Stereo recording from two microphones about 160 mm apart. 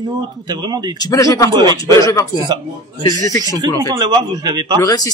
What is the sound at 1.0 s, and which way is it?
Speech, 20° left (ahead or behind).